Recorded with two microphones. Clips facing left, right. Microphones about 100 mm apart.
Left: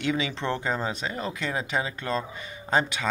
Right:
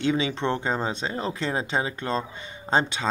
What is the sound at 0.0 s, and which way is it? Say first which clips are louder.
Speech: right 3 dB; 25° right (ahead or behind).